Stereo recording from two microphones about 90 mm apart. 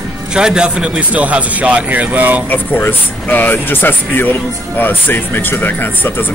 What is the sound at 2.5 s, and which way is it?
Speech, 20° left (ahead or behind).